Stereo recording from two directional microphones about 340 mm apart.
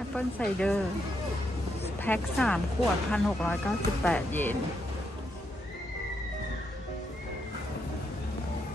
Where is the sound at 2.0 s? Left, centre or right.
Centre.